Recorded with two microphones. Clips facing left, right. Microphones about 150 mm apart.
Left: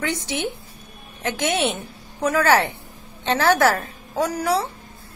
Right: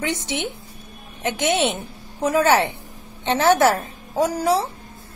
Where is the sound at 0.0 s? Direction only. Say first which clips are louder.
Even; 20° right (ahead or behind).